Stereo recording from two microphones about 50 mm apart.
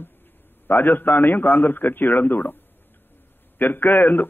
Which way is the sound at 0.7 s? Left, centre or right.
Left.